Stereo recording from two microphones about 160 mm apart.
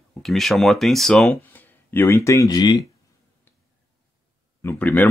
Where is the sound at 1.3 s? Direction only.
10° left (ahead or behind).